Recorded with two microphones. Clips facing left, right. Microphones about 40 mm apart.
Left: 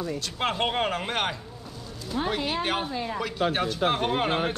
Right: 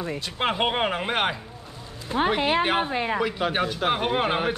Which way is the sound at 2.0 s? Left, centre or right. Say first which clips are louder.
Right 6 dB; right.